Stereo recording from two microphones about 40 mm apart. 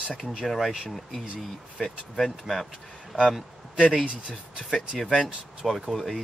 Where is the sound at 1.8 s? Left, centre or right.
Centre.